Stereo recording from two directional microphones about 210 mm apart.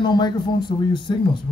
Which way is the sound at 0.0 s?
20° left (ahead or behind).